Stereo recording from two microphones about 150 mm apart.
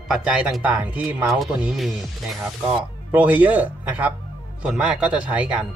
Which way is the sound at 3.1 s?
10° right (ahead or behind).